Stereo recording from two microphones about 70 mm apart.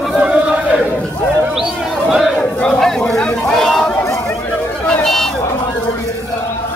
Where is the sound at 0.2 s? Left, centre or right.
Centre.